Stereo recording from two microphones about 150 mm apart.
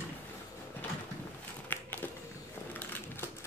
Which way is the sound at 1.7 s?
15° left (ahead or behind).